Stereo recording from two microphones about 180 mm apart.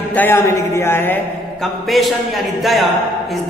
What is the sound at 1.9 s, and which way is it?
A woman's voice, centre (ahead or behind).